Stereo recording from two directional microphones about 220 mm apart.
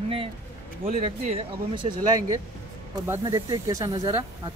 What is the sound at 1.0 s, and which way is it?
Speech, 25° right (ahead or behind).